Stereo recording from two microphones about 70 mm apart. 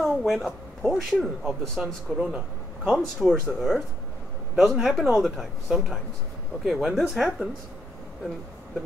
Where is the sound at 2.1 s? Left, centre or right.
Centre.